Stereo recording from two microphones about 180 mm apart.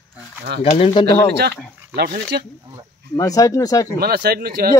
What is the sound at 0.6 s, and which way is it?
Speech, 35° left (ahead or behind).